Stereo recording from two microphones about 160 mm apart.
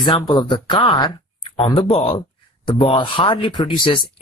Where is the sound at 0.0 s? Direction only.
30° left (ahead or behind).